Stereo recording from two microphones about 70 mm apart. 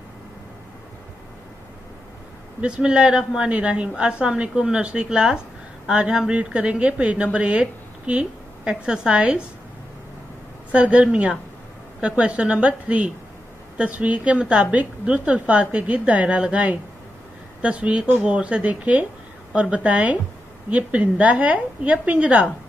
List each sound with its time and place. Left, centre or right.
2.6 s a woman's voice: centre
10.7 s a woman's voice: right